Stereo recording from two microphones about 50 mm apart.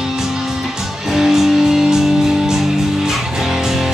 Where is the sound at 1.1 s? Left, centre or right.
Centre.